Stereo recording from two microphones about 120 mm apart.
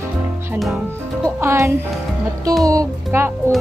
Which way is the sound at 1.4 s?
25° right (ahead or behind).